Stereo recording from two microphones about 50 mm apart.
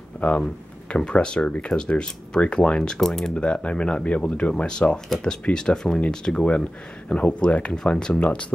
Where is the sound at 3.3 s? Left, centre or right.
Left.